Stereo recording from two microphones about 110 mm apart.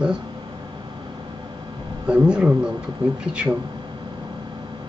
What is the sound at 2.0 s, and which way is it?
Speech, 10° right (ahead or behind).